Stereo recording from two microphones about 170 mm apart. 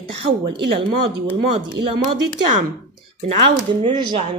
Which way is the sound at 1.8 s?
85° right.